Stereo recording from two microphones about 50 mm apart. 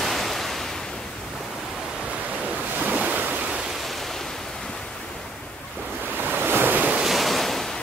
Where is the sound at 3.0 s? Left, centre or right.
Right.